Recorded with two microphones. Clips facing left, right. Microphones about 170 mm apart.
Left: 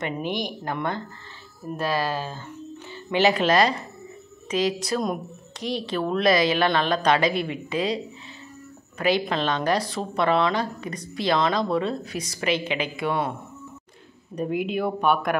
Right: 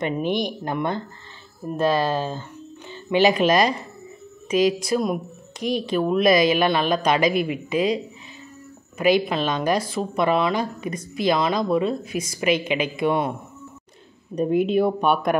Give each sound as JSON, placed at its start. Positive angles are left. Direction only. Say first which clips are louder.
{"t": 0.3, "sound": "speech", "louder": "right 4 dB", "side_deg": -20}
{"t": 14.3, "sound": "speech", "louder": "right 6 dB", "side_deg": -25}